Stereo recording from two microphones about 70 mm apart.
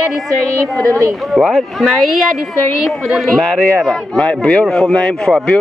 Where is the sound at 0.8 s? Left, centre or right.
Right.